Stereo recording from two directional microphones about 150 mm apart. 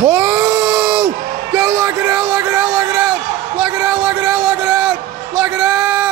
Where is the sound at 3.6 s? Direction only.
5° right (ahead or behind).